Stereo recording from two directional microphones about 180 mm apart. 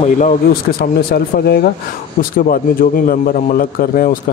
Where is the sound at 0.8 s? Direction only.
60° left (ahead or behind).